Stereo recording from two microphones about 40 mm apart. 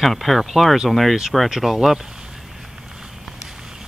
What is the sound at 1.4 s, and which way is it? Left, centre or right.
Speech, centre.